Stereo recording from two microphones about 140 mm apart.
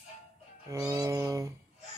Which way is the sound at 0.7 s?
25° right (ahead or behind).